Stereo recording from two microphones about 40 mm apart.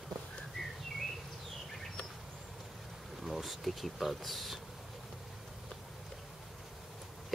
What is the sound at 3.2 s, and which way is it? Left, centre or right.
Speech, centre.